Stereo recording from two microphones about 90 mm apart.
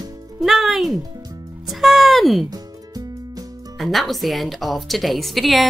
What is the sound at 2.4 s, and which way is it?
Music, 45° right (ahead or behind).